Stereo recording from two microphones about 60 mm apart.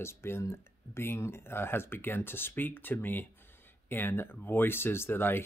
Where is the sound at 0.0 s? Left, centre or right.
Left.